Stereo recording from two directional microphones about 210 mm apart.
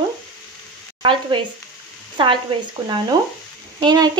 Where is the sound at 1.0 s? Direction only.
25° right (ahead or behind).